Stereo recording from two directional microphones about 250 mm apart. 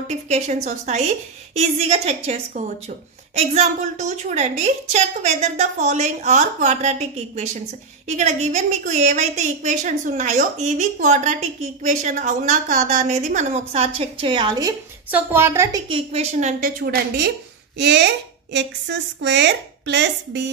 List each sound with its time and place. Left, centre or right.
0.1 s a woman's voice: right